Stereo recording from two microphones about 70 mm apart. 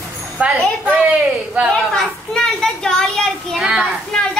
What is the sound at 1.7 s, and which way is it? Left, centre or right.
Speech, centre.